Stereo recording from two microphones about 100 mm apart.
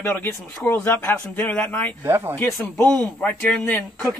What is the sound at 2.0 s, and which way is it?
Speech, 25° right (ahead or behind).